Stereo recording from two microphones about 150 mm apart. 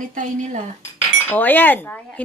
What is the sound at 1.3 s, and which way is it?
Speech, 10° left (ahead or behind).